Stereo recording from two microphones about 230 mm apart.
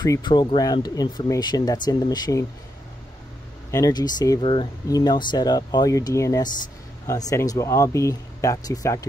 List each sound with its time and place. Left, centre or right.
0.0 s speech: centre
3.7 s speech: centre